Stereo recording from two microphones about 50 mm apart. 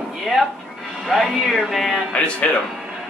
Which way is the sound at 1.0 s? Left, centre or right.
Centre.